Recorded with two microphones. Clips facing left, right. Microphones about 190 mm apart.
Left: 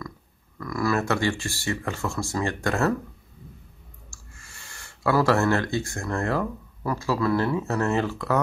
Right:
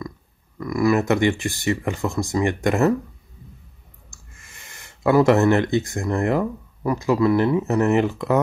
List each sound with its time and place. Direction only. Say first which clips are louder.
0.6 s speech: right 6 dB; 15° right (ahead or behind)
4.1 s speech: right 3 dB; 20° right (ahead or behind)